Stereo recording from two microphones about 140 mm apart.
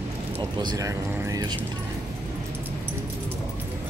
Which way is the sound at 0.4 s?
30° right (ahead or behind).